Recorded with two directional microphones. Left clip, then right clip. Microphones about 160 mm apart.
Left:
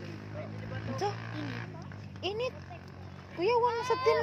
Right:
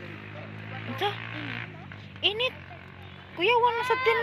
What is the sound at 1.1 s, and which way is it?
Speech, 30° left (ahead or behind).